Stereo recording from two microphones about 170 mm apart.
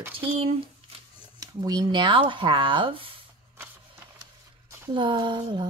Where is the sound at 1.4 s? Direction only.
25° right (ahead or behind).